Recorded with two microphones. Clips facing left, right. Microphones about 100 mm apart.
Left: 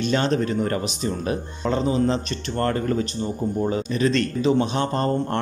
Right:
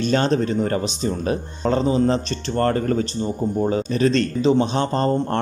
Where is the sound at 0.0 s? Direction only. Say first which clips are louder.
Right 2 dB; 35° right (ahead or behind).